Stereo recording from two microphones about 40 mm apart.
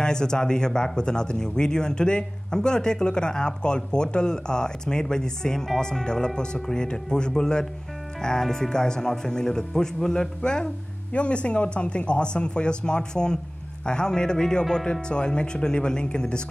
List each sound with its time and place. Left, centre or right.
0.0 s speech: centre